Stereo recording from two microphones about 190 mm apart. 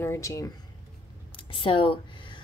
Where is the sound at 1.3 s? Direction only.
25° left (ahead or behind).